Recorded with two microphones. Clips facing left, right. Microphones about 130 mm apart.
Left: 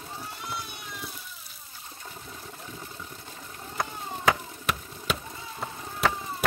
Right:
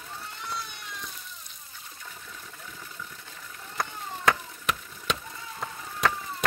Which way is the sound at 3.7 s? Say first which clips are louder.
Left 1 dB; 5° left (ahead or behind).